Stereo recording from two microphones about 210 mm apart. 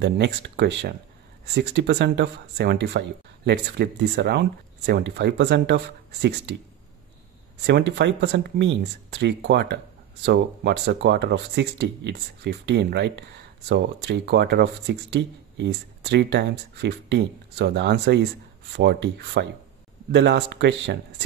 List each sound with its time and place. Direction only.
0.0 s speech: 55° right (ahead or behind)
7.6 s speech: 50° right (ahead or behind)